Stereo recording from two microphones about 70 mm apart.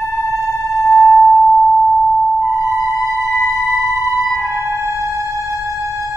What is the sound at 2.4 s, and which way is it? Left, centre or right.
Music, right.